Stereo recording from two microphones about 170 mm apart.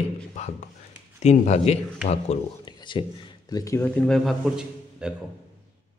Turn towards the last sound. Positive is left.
turn(degrees=-5)  # may be behind; listen again after turning